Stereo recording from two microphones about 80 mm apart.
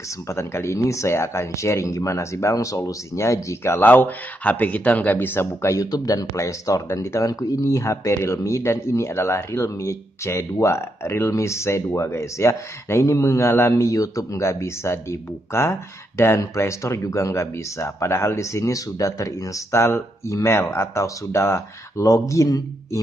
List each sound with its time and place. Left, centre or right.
0.3 s speech: left
5.9 s speech: left